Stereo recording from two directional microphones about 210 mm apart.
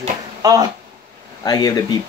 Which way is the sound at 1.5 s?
15° left (ahead or behind).